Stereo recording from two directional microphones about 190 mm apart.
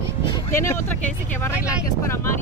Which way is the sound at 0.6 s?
15° left (ahead or behind).